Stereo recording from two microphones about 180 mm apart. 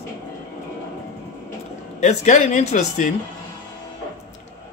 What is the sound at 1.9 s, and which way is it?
Speech, 40° left (ahead or behind).